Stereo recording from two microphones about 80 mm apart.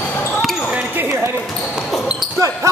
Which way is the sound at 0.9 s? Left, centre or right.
Right.